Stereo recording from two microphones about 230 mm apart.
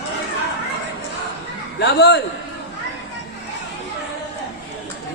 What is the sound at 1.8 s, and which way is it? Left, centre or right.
Speech, left.